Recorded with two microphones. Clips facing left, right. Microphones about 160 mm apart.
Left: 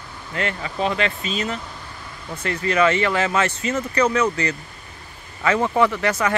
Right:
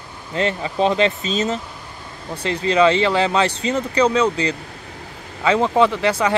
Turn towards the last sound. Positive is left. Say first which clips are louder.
# right 3 dB
turn(degrees=-15)  # may be behind; listen again after turning